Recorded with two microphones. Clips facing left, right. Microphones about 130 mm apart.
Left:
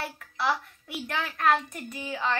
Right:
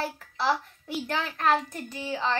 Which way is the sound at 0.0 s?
30° right (ahead or behind).